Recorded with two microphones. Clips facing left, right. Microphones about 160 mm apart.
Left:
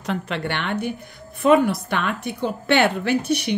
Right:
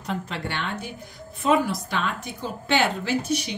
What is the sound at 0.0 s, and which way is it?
A woman's voice, 70° left (ahead or behind).